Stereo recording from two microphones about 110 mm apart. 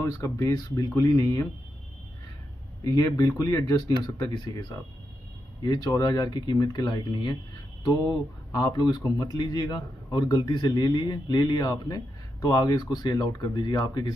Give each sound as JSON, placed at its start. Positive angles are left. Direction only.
{"t": 0.2, "sound": "speech", "side_deg": 30}
{"t": 2.8, "sound": "speech", "side_deg": 35}